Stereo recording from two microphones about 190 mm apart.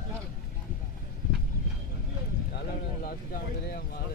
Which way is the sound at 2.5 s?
55° left (ahead or behind).